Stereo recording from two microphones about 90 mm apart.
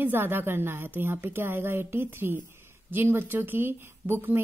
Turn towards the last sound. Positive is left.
turn(degrees=-20)  # may be behind; listen again after turning